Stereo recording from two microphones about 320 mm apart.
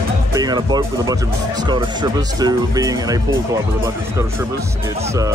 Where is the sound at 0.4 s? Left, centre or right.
Centre.